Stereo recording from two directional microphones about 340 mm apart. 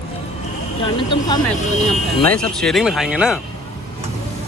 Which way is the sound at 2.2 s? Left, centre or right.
Centre.